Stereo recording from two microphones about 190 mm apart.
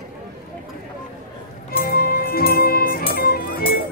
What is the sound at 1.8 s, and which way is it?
Music, 55° left (ahead or behind).